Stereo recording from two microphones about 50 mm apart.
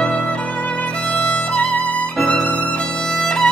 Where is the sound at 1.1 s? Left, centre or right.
Left.